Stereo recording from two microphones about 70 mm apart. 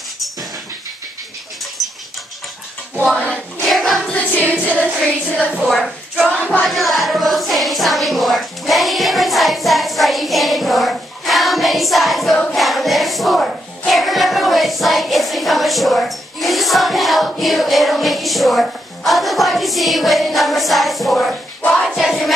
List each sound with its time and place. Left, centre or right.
3.6 s a sound: centre
4.1 s music: centre
5.4 s a woman's voice: centre
6.2 s music: left
6.6 s music: centre